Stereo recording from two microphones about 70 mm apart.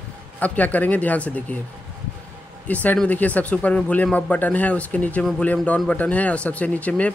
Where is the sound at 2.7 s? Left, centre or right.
Left.